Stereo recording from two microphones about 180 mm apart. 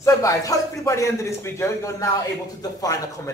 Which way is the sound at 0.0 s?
15° left (ahead or behind).